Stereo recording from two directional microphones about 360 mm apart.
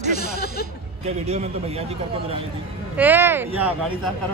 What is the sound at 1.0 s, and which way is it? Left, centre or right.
Speech, centre.